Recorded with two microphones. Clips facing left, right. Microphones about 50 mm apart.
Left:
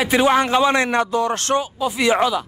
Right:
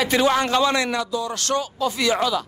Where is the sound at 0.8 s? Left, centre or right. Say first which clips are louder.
Left 5 dB; left.